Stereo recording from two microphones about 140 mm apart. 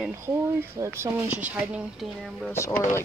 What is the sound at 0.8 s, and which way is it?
Speech, 15° right (ahead or behind).